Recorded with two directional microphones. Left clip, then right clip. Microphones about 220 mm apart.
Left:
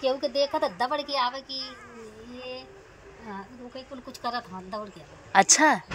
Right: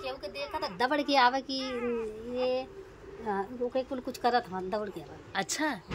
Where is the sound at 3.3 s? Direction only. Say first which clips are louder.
Right 9 dB; 15° right (ahead or behind).